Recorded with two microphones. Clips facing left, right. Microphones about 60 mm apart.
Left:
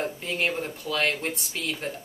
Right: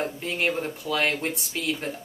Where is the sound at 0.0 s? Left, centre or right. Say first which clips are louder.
Right 1 dB; centre.